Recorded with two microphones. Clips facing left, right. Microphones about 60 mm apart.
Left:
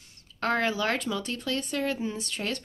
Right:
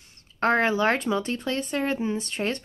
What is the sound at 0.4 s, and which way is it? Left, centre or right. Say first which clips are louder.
Speech: right 5 dB; right.